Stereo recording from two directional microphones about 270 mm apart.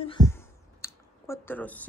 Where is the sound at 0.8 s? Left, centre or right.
Centre.